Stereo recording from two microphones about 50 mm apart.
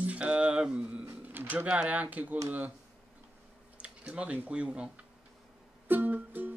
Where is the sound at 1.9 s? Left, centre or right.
Right.